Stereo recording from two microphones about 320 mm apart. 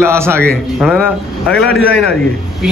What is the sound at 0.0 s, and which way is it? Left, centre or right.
A man's voice, centre.